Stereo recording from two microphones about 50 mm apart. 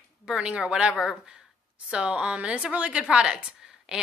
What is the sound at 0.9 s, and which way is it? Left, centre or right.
Speech, centre.